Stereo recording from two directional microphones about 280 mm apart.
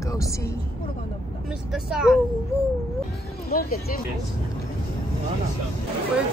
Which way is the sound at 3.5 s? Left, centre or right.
Left.